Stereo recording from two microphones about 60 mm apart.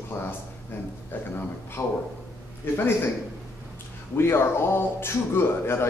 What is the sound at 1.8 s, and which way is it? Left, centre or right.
Speech, left.